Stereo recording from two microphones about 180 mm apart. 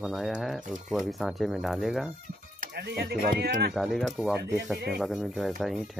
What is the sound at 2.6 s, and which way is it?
Speech, 65° right (ahead or behind).